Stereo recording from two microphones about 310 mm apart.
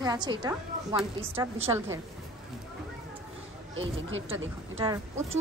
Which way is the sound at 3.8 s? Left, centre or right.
Right.